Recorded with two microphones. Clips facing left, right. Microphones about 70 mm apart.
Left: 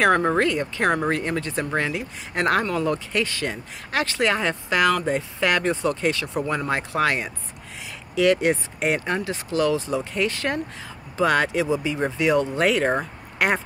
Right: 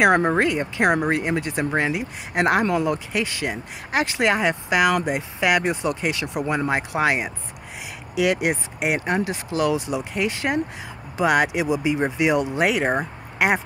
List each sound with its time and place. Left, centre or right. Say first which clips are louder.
0.0 s speech: right 1 dB; centre